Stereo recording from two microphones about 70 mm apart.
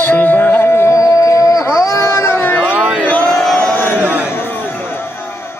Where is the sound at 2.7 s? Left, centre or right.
Centre.